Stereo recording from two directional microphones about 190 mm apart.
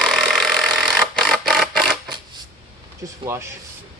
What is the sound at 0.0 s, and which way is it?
Vehicle, centre (ahead or behind).